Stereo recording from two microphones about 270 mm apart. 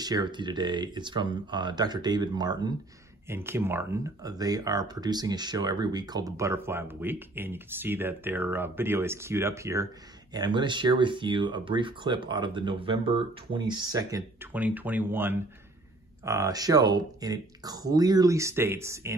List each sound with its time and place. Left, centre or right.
0.0 s speech: centre